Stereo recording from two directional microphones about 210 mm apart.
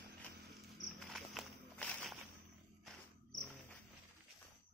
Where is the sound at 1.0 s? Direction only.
Centre (ahead or behind).